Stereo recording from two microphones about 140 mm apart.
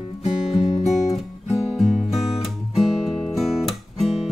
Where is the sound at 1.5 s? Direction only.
Centre (ahead or behind).